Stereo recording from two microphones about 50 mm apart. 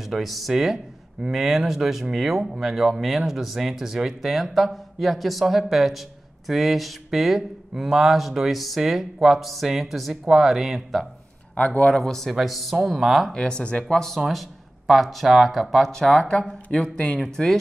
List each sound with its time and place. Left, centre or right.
0.0 s speech: centre
11.5 s speech: left
11.9 s speech: centre
13.3 s speech: centre
13.9 s speech: centre
15.9 s speech: centre
17.2 s speech: centre